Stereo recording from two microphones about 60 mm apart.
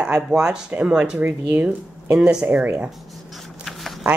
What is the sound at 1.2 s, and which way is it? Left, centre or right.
Speech, right.